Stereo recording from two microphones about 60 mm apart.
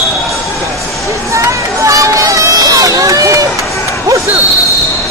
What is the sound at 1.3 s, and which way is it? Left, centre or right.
Run, right.